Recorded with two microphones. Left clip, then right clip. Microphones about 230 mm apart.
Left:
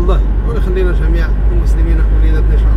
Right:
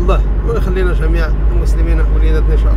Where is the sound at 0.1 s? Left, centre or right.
Right.